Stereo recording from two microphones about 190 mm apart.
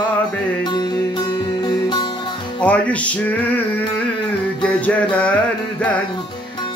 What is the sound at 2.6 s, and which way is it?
Music, 5° left (ahead or behind).